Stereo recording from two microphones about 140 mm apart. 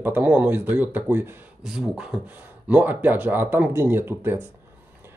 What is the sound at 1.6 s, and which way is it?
Speech, 5° right (ahead or behind).